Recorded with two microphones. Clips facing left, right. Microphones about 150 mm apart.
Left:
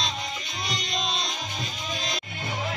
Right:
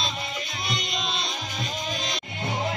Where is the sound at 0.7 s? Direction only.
Centre (ahead or behind).